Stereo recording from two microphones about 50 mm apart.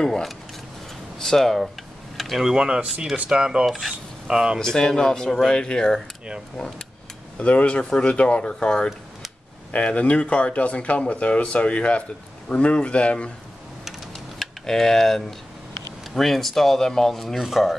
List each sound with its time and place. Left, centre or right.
0.0 s speech: centre
2.1 s a sound: centre
2.4 s speech: centre
2.9 s rub: centre
3.3 s speech: centre
4.6 s speech: centre
7.3 s speech: left
14.4 s speech: centre
17.4 s rub: centre